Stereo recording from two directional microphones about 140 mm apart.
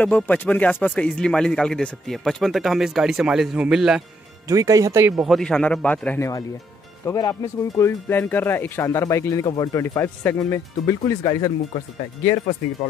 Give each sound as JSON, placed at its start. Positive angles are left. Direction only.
{"t": 0.0, "sound": "speech", "side_deg": 10}
{"t": 4.5, "sound": "speech", "side_deg": -25}
{"t": 5.1, "sound": "a man's voice", "side_deg": 0}